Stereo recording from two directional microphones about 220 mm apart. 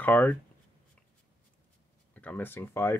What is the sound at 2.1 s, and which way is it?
Speech, 5° left (ahead or behind).